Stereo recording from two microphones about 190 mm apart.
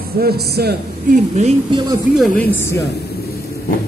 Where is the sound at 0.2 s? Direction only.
55° right (ahead or behind).